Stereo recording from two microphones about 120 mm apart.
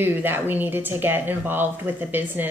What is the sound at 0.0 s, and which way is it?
Speech, 15° right (ahead or behind).